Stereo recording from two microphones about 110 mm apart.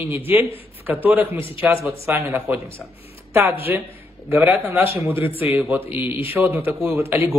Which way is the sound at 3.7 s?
20° right (ahead or behind).